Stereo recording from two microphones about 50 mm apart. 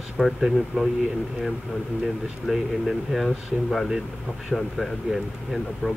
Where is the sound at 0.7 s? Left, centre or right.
Right.